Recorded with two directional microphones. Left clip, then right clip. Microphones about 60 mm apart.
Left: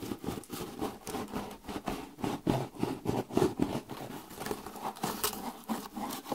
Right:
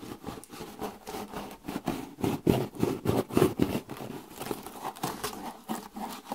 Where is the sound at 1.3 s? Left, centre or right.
Right.